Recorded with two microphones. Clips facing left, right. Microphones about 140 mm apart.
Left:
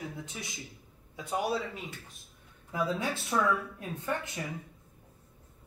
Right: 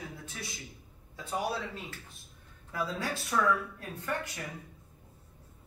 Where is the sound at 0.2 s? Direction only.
15° left (ahead or behind).